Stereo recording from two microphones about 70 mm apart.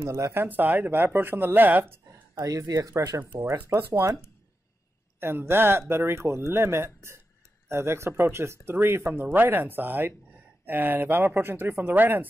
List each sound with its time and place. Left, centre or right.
0.0 s speech: right
0.4 s speech: right
2.4 s speech: right
3.7 s speech: right
5.2 s speech: right